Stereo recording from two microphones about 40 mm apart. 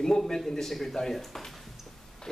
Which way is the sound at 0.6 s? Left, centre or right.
Centre.